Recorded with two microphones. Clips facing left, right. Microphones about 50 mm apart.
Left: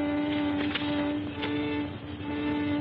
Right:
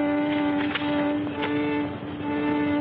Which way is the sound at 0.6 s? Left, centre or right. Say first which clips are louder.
Right 4 dB; centre.